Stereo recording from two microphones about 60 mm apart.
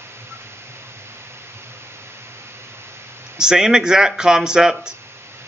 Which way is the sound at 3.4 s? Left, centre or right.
Centre.